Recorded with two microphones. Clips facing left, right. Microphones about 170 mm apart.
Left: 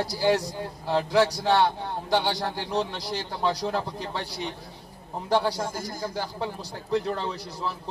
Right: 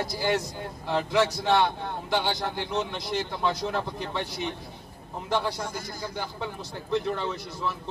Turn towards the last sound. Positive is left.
turn(degrees=35)  # may be behind; listen again after turning